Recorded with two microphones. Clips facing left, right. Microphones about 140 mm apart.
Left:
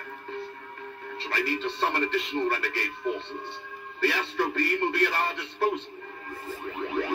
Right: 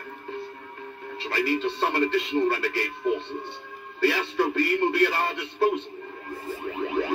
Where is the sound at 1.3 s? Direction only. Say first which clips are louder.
Right 4 dB; 15° right (ahead or behind).